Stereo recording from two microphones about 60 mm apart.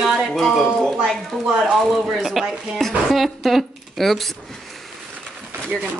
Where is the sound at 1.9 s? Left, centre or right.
Centre.